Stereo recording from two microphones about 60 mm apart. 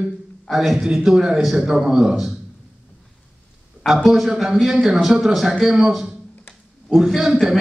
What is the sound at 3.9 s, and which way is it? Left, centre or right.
A man's voice, centre.